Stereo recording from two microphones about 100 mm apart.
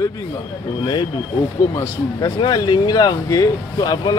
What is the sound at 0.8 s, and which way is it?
Speech, 50° left (ahead or behind).